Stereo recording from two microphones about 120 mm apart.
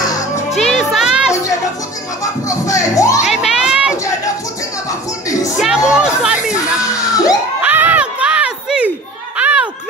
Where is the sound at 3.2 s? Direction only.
5° right (ahead or behind).